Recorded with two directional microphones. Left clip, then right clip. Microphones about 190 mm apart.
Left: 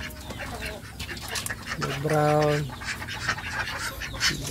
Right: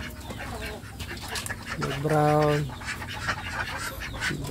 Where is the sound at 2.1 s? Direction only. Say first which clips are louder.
Even; centre (ahead or behind).